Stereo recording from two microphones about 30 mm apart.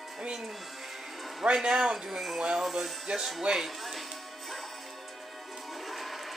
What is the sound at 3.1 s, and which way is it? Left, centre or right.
Music, right.